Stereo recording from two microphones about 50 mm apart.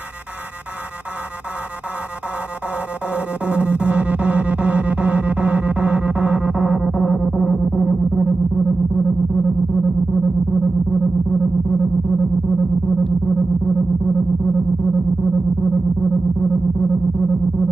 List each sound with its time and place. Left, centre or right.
2.7 s music: right